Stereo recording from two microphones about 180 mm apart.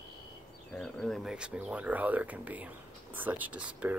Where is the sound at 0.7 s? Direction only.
5° left (ahead or behind).